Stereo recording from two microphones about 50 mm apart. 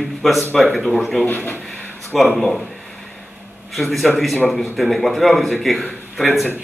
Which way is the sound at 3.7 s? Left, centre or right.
Centre.